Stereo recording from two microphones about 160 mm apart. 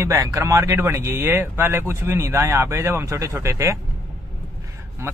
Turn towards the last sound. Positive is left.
turn(degrees=-15)  # may be behind; listen again after turning